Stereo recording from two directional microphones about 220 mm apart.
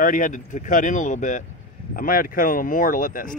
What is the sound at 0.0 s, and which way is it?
Speech, 35° left (ahead or behind).